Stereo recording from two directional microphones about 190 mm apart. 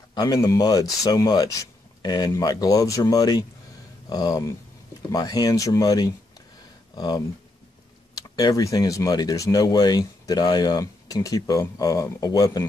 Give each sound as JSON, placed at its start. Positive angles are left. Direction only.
{"t": 0.1, "sound": "speech", "side_deg": 20}
{"t": 8.4, "sound": "speech", "side_deg": 20}